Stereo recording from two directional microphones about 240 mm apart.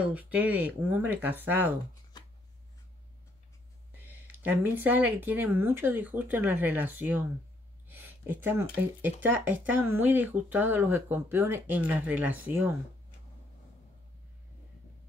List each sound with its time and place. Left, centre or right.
0.0 s speech: centre
4.1 s speech: centre